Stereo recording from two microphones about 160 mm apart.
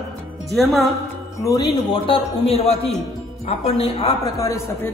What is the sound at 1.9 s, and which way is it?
A man's voice, 35° left (ahead or behind).